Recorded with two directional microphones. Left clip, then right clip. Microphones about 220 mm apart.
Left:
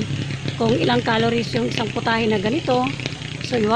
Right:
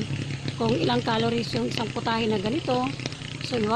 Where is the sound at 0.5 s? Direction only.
35° right (ahead or behind).